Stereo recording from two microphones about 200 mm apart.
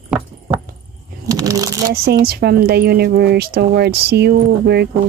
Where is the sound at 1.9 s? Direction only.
50° right (ahead or behind).